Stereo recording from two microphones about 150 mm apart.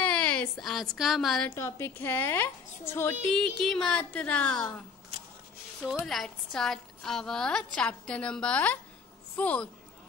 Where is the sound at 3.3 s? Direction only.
5° left (ahead or behind).